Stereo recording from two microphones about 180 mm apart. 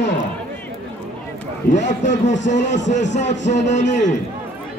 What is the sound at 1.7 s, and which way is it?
Speech, 40° left (ahead or behind).